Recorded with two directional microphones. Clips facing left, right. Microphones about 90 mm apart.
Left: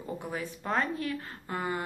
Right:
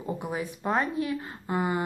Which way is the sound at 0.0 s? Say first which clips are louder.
Right 4 dB; 15° right (ahead or behind).